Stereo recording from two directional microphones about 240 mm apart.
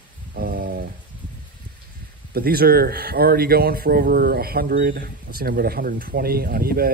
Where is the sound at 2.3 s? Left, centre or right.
Right.